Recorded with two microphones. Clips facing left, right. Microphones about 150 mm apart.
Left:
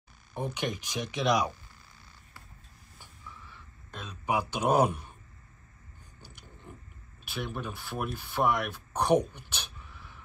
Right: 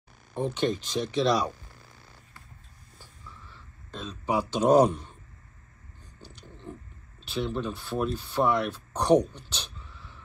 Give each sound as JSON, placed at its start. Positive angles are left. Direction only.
{"t": 0.6, "sound": "speech", "side_deg": 15}
{"t": 3.5, "sound": "speech", "side_deg": 15}
{"t": 7.2, "sound": "speech", "side_deg": 15}
{"t": 9.0, "sound": "a sound", "side_deg": 10}